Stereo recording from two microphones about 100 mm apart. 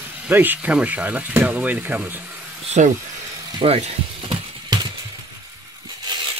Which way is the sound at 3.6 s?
80° right.